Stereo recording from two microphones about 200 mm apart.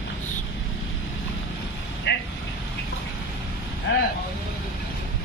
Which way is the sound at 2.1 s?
60° left (ahead or behind).